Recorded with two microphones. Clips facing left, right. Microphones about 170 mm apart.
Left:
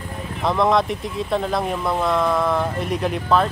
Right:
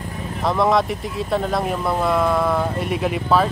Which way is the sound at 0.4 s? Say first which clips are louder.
Even; centre (ahead or behind).